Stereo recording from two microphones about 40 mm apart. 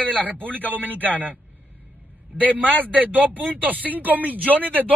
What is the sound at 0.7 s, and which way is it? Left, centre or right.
Speech, right.